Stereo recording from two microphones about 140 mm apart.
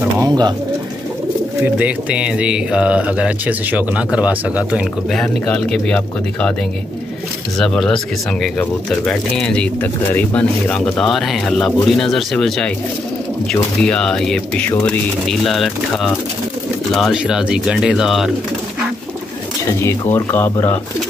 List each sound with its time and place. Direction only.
0.2 s speech: 30° right (ahead or behind)
1.6 s speech: 10° right (ahead or behind)
5.1 s speech: 5° left (ahead or behind)
7.5 s speech: 5° left (ahead or behind)
19.8 s speech: 20° left (ahead or behind)